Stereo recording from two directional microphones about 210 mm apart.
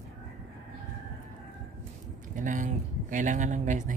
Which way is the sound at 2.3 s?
35° right (ahead or behind).